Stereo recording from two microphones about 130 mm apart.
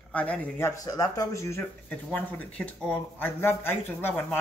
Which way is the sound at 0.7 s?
25° left (ahead or behind).